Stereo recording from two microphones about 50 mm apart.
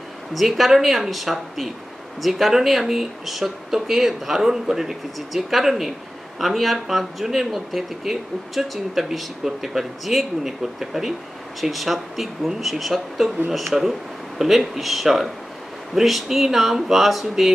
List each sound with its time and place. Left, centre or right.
0.3 s speech: centre